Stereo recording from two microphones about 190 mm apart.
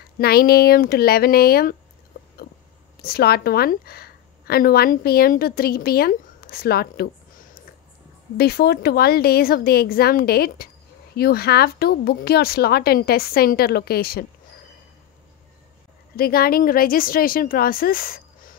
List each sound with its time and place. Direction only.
0.2 s speech: 55° left (ahead or behind)
3.0 s speech: 55° left (ahead or behind)
8.4 s speech: 55° left (ahead or behind)
16.2 s speech: 50° left (ahead or behind)